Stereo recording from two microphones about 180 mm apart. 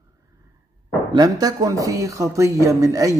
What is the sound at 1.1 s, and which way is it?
Speech, 20° right (ahead or behind).